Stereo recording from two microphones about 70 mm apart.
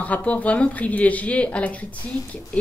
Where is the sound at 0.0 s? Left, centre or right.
Left.